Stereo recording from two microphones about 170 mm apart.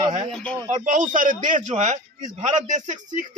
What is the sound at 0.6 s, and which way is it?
A man's voice, 50° right (ahead or behind).